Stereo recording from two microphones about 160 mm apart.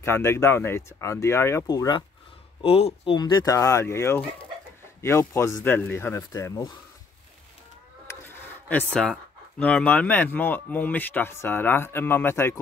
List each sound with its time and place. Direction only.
0.0 s speech: 15° left (ahead or behind)
2.6 s speech: 35° left (ahead or behind); by 6.8 s 20° left (ahead or behind)
8.1 s speech: 15° left (ahead or behind)